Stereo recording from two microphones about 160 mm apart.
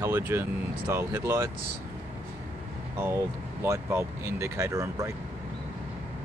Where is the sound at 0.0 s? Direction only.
15° right (ahead or behind).